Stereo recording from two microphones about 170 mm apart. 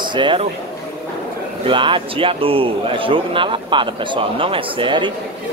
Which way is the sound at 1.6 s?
30° right (ahead or behind).